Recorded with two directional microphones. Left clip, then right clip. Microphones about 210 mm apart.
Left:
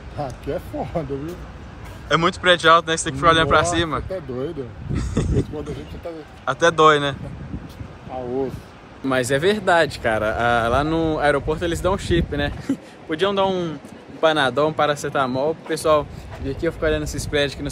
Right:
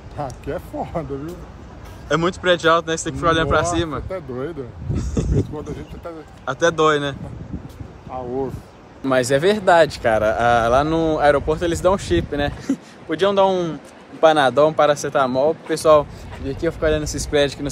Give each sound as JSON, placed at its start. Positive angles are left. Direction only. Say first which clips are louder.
{"t": 0.2, "sound": "speech", "louder": "even", "side_deg": 0}
{"t": 2.0, "sound": "speech", "louder": "left 1 dB", "side_deg": -20}
{"t": 5.7, "sound": "speech", "louder": "even", "side_deg": 0}
{"t": 6.4, "sound": "speech", "louder": "left 2 dB", "side_deg": -15}
{"t": 9.0, "sound": "speech", "louder": "right 2 dB", "side_deg": 5}